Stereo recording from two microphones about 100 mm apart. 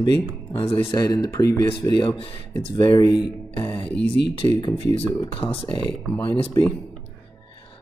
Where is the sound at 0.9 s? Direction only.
40° left (ahead or behind).